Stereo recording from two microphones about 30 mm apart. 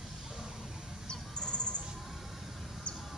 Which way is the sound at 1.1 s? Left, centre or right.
Left.